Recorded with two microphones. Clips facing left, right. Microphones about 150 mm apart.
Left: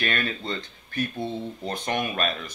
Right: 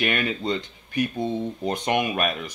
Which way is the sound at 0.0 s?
15° right (ahead or behind).